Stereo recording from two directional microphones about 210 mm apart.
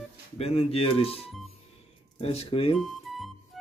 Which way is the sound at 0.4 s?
30° left (ahead or behind).